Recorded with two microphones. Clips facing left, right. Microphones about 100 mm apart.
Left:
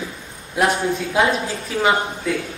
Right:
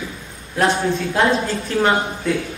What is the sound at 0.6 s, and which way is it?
A man's voice, 10° left (ahead or behind).